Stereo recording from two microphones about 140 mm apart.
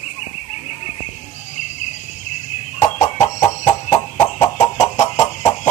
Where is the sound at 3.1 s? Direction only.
60° left (ahead or behind).